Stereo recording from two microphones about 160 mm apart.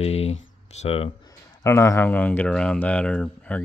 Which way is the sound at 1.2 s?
15° left (ahead or behind).